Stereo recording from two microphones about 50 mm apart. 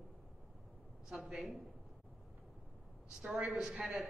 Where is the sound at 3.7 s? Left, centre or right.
Right.